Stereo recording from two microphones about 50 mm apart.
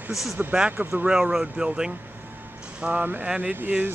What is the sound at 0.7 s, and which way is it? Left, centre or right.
Speech, right.